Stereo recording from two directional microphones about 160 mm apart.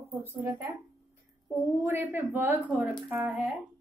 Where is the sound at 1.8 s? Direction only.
15° right (ahead or behind).